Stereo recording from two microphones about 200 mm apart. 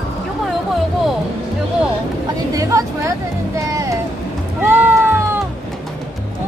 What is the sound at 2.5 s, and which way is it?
Vehicle, 15° right (ahead or behind).